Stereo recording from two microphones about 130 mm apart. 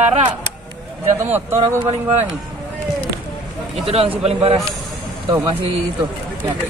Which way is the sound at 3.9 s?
50° right (ahead or behind).